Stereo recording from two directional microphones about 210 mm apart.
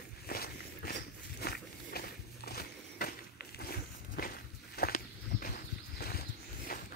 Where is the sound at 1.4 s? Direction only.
45° left (ahead or behind).